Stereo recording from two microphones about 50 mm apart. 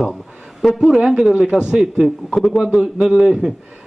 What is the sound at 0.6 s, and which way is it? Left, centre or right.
A man's voice, centre.